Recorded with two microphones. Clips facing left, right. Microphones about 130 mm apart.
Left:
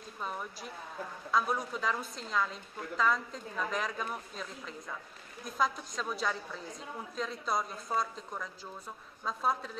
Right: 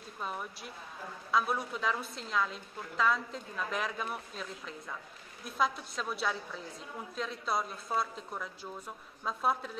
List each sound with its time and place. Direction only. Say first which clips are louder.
0.2 s a woman's voice: even; 5° right (ahead or behind)